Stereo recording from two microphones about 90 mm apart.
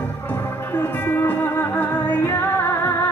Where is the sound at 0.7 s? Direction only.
20° left (ahead or behind).